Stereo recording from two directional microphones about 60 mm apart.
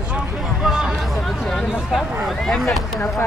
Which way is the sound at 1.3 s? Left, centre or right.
Centre.